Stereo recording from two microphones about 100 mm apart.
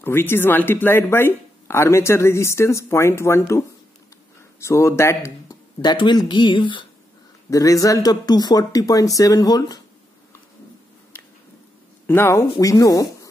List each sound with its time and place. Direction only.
0.0 s speech: 20° left (ahead or behind)
5.8 s speech: 50° left (ahead or behind)
7.4 s speech: 35° left (ahead or behind)
12.1 s speech: 25° left (ahead or behind)